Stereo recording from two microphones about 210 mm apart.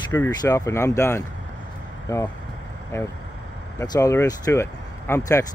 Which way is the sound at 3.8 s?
15° left (ahead or behind).